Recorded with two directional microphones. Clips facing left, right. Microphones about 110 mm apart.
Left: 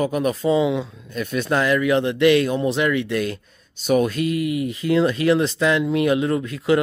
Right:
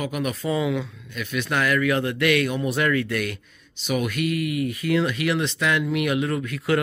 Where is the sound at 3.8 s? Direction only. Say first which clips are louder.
Left 6 dB; 40° left (ahead or behind).